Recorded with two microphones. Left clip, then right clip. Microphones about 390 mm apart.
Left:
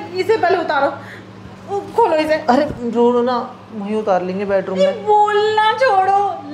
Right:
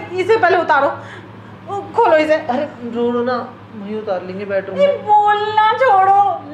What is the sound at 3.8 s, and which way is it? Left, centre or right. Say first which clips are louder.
Speech: left 5 dB; left.